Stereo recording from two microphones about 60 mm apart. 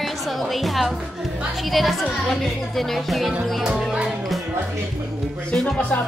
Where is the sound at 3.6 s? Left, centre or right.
Centre.